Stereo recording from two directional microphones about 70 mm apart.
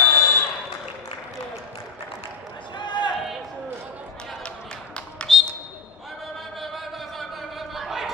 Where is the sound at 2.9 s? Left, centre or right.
Left.